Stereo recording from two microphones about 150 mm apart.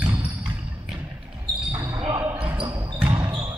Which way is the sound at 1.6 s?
10° right (ahead or behind).